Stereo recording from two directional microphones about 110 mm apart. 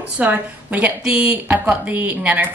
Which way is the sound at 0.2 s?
15° right (ahead or behind).